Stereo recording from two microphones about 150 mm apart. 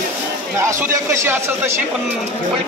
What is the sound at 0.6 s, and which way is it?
A man's voice, 20° right (ahead or behind).